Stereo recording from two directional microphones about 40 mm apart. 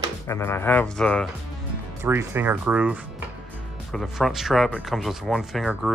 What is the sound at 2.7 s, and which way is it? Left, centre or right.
Speech, right.